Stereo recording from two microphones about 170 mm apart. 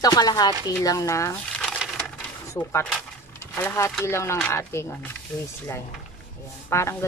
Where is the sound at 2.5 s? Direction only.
15° left (ahead or behind).